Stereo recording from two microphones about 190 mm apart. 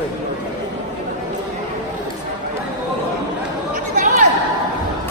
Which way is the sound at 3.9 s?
40° right (ahead or behind).